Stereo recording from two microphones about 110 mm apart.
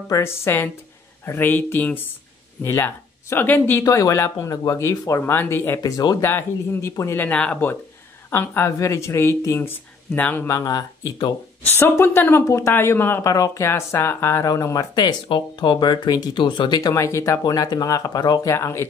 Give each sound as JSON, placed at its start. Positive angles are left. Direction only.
{"t": 0.1, "sound": "speech", "side_deg": 25}
{"t": 3.8, "sound": "speech", "side_deg": 30}
{"t": 5.8, "sound": "speech", "side_deg": 35}
{"t": 6.2, "sound": "speech", "side_deg": 25}
{"t": 7.2, "sound": "speech", "side_deg": 15}
{"t": 10.4, "sound": "speech", "side_deg": 30}
{"t": 11.7, "sound": "speech", "side_deg": 20}
{"t": 16.9, "sound": "speech", "side_deg": 25}
{"t": 18.5, "sound": "speech", "side_deg": 25}